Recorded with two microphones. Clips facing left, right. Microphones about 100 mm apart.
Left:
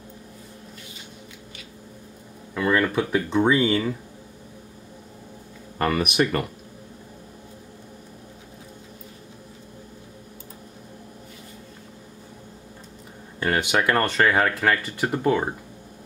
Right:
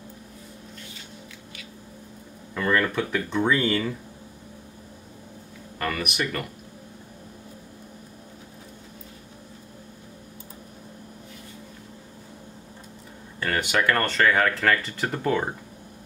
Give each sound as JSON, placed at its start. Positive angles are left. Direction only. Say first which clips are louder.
{"t": 2.5, "sound": "speech", "louder": "left 2 dB", "side_deg": 10}
{"t": 5.8, "sound": "speech", "louder": "left 6 dB", "side_deg": 35}
{"t": 13.4, "sound": "speech", "louder": "left 2 dB", "side_deg": 20}